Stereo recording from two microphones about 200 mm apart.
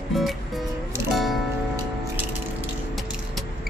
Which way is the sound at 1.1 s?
Centre (ahead or behind).